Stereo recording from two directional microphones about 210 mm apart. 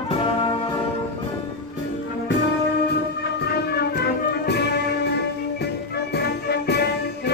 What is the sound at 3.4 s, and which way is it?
Music, 50° left (ahead or behind).